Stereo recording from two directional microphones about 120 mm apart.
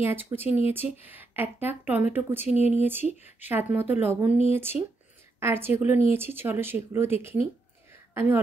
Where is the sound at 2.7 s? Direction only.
15° right (ahead or behind).